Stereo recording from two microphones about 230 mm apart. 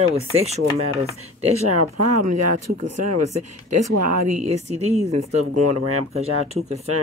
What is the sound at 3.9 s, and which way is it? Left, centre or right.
Speech, right.